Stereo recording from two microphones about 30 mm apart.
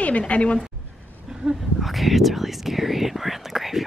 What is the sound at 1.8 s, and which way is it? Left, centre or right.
Speech, centre.